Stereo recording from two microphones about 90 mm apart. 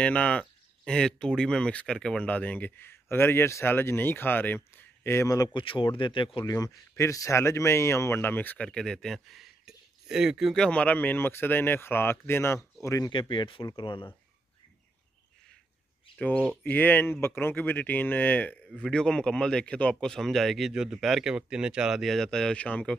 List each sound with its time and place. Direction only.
0.0 s speech: 15° left (ahead or behind); by 5.5 s 35° left (ahead or behind)
5.5 s speech: 70° left (ahead or behind)
6.4 s speech: 45° left (ahead or behind); by 8.6 s 20° left (ahead or behind)
8.6 s speech: 5° left (ahead or behind)
10.5 s speech: 10° left (ahead or behind); by 12.5 s 25° left (ahead or behind)
12.8 s speech: 35° left (ahead or behind)
13.1 s speech: 60° left (ahead or behind)
16.2 s speech: 15° left (ahead or behind)